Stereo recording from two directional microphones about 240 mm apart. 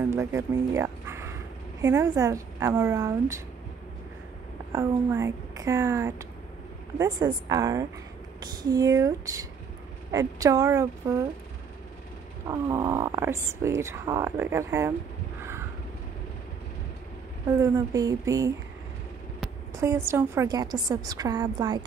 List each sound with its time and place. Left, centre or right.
0.1 s speech: centre
4.7 s speech: centre
12.4 s speech: centre
17.5 s speech: centre
19.7 s a sound: centre
20.1 s speech: centre